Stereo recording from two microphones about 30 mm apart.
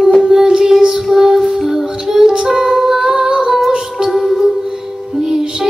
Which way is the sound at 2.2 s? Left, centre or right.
Centre.